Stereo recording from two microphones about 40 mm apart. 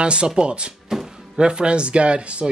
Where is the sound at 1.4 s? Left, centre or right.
Right.